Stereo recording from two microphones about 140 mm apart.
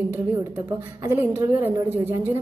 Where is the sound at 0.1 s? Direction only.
15° right (ahead or behind).